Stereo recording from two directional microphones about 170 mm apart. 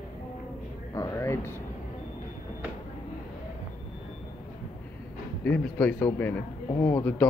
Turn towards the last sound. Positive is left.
turn(degrees=15)  # may be behind; listen again after turning